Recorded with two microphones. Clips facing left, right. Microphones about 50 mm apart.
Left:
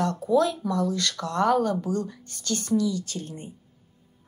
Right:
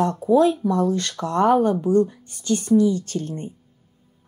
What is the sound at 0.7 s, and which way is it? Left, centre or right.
Speech, right.